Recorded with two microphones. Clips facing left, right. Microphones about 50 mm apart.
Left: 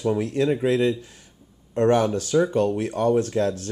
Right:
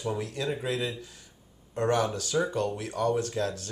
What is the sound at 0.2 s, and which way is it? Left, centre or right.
Speech, left.